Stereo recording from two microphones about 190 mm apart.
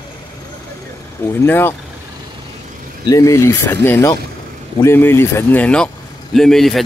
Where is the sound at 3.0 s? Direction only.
15° left (ahead or behind).